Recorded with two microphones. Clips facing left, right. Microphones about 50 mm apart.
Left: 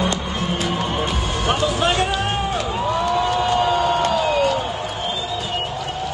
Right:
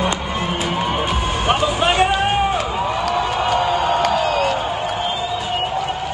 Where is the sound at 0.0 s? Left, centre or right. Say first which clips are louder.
Right 2 dB; right.